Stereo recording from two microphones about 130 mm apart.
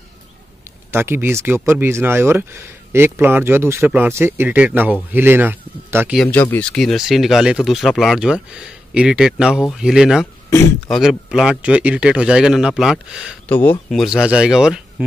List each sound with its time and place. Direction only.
0.9 s speech: 15° right (ahead or behind)
6.3 s speech: 15° left (ahead or behind); by 13.4 s 5° right (ahead or behind)
13.5 s speech: 15° left (ahead or behind)
13.9 s speech: 5° right (ahead or behind)